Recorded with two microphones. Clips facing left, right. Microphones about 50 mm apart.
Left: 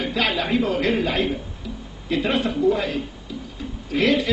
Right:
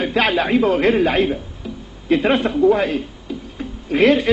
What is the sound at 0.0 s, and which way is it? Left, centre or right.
A woman's voice, right.